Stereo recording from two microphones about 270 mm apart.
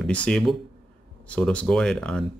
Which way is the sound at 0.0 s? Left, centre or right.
Centre.